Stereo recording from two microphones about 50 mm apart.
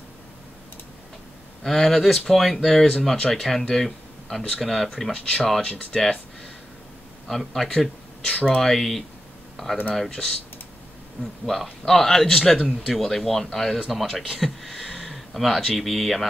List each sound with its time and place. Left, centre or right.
1.6 s speech: centre
5.1 s speech: centre
7.2 s speech: centre
11.4 s speech: centre